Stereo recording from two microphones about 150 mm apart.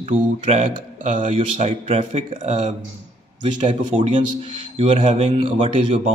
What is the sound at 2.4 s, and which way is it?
A man's voice, 50° right (ahead or behind).